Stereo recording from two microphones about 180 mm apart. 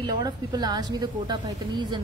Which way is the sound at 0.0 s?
20° right (ahead or behind).